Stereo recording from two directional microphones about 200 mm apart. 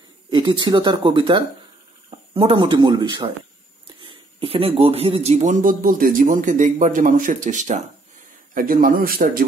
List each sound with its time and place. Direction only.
0.3 s a man's voice: 25° right (ahead or behind); by 9.4 s 45° right (ahead or behind)